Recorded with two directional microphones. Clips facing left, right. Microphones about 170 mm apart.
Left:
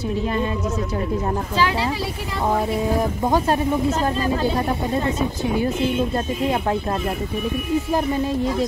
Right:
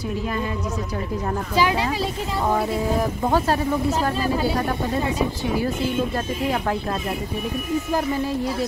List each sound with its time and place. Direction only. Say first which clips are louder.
1.6 s speech: right 1 dB; 15° right (ahead or behind)
3.3 s speech: left 1 dB; 20° left (ahead or behind)
6.1 s speech: left 2 dB; 25° left (ahead or behind)